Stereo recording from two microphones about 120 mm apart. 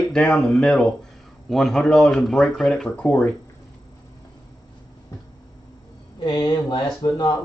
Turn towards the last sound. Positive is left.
turn(degrees=35)  # may be behind; listen again after turning